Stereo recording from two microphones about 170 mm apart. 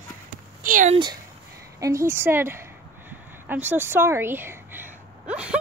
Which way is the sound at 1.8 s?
15° right (ahead or behind).